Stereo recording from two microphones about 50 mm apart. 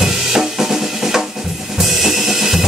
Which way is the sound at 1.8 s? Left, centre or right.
Centre.